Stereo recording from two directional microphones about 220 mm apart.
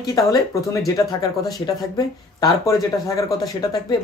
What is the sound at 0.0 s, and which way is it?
Speech, 15° left (ahead or behind).